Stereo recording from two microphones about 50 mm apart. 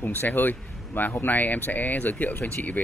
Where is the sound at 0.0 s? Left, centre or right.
Left.